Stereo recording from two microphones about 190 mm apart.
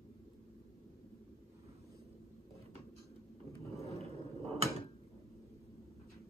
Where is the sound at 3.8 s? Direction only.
35° right (ahead or behind).